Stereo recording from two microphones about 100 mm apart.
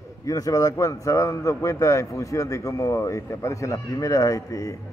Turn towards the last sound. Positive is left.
turn(degrees=35)  # may be behind; listen again after turning